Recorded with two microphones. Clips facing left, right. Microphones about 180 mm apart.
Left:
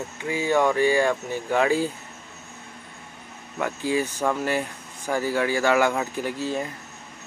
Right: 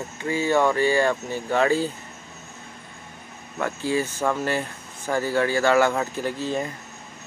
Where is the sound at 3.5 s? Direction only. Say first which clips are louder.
Even; 15° left (ahead or behind).